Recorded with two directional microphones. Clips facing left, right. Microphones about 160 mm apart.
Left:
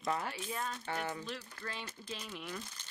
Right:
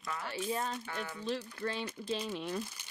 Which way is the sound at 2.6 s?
10° right (ahead or behind).